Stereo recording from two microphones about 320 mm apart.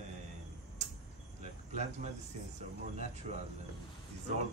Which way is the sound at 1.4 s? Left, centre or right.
Right.